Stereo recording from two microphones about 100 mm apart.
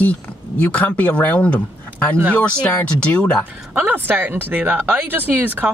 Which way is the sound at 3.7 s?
15° right (ahead or behind).